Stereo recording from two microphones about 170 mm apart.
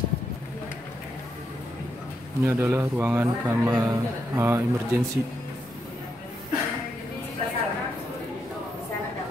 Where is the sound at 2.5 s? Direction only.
10° right (ahead or behind).